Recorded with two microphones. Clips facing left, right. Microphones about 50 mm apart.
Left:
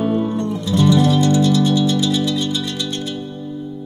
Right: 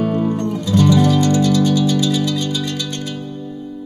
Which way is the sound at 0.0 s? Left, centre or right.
Right.